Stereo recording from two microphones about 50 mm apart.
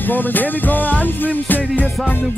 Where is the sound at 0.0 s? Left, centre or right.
Left.